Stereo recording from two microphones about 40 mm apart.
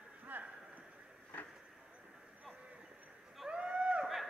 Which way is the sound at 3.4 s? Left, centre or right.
Right.